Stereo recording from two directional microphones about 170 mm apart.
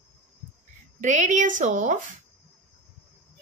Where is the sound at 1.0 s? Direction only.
45° right (ahead or behind).